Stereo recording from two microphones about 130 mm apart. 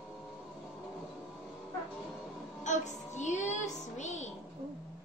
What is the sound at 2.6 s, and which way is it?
Child singing, 65° left (ahead or behind).